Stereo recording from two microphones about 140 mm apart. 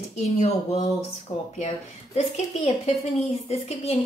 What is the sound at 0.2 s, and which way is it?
Speech, 55° left (ahead or behind).